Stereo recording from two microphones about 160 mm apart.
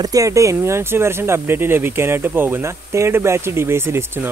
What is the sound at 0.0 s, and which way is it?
Speech, 20° right (ahead or behind).